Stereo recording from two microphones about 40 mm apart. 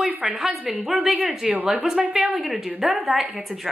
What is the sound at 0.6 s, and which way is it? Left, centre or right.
Speech, right.